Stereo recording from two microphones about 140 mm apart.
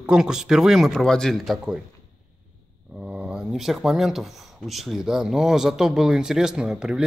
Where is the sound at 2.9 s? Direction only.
10° right (ahead or behind).